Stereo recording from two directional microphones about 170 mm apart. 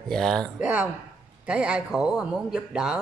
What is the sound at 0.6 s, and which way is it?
Speech, 10° right (ahead or behind).